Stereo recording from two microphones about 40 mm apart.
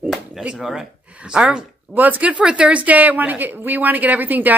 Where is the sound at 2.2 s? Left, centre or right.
Right.